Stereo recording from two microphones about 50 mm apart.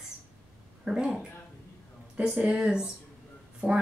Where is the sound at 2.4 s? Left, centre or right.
Centre.